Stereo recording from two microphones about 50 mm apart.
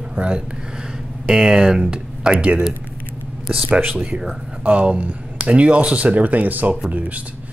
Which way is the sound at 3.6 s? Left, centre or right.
Right.